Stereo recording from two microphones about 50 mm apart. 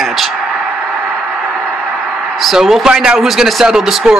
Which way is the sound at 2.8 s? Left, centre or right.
Centre.